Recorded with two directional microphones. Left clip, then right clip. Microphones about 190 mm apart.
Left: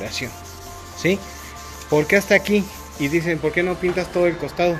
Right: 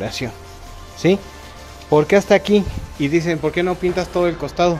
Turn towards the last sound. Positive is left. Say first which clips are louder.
# right 2 dB
turn(degrees=-15)  # may be behind; listen again after turning